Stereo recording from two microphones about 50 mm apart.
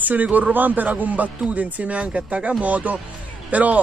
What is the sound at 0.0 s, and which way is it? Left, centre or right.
Speech, right.